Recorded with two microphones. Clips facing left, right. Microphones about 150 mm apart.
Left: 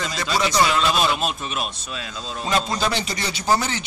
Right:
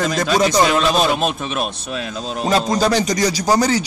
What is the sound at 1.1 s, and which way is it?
Speech, 65° right (ahead or behind).